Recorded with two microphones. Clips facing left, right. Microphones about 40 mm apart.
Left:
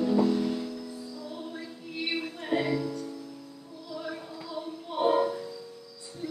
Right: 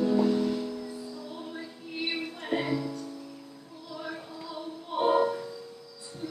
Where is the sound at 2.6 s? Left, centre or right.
Centre.